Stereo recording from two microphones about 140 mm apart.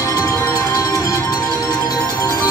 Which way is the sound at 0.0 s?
20° left (ahead or behind).